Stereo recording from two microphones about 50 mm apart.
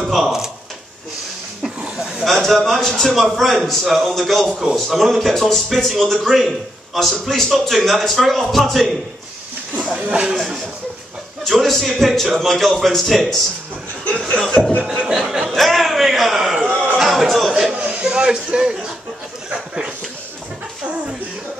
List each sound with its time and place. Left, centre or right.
0.0 s speech: centre
2.2 s a man's voice: centre
9.8 s a sound: centre
10.0 s speech: right
11.4 s a man's voice: centre
14.6 s speech: centre
14.9 s speech: centre
15.5 s a sound: centre
17.7 s a sound: right